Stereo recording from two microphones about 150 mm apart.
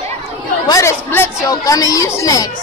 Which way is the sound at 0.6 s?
20° left (ahead or behind).